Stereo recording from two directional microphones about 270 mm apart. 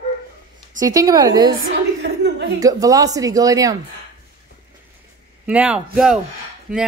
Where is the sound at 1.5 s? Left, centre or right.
Right.